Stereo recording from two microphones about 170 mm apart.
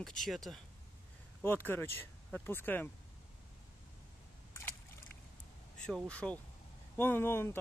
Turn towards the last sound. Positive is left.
turn(degrees=15)  # may be behind; listen again after turning